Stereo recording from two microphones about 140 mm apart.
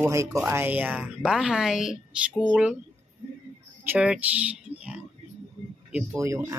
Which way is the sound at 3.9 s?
10° right (ahead or behind).